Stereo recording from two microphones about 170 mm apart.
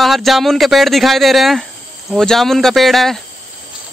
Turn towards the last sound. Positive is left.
turn(degrees=0)  # may be behind; listen again after turning